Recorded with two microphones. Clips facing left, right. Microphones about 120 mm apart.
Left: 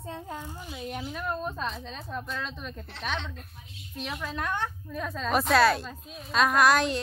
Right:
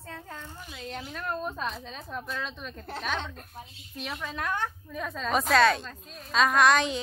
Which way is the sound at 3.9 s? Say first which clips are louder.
Left 1 dB; centre (ahead or behind).